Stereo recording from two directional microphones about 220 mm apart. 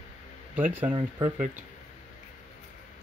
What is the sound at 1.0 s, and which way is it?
Speech, 20° right (ahead or behind).